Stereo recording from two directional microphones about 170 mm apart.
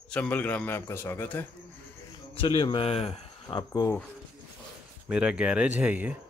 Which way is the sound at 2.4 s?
30° left (ahead or behind).